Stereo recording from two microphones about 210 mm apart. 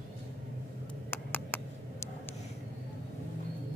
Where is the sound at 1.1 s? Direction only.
10° left (ahead or behind).